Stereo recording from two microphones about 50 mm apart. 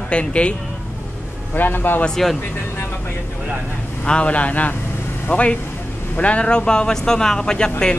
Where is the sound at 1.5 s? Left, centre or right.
Left.